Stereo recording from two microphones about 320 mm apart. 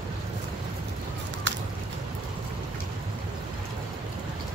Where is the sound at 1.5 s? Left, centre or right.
Right.